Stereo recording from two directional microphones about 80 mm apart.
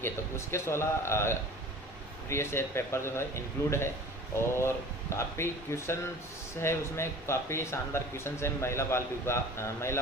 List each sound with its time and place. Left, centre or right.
0.0 s speech: left